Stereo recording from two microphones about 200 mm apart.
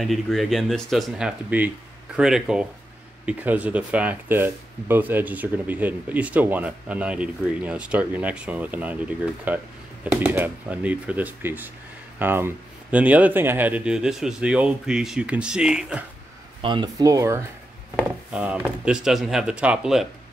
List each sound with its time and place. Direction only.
0.0 s speech: centre (ahead or behind)
16.6 s speech: 20° right (ahead or behind); by 20.1 s centre (ahead or behind)